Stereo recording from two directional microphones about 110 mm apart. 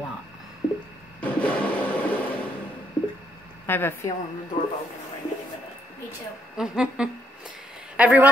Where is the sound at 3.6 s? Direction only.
20° left (ahead or behind).